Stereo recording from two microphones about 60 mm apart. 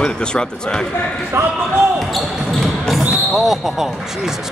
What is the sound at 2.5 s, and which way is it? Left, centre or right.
Basketball bounce, centre.